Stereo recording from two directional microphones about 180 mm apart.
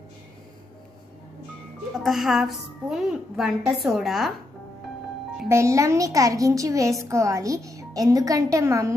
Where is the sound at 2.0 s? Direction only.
Centre (ahead or behind).